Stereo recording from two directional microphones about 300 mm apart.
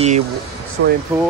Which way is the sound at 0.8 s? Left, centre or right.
Right.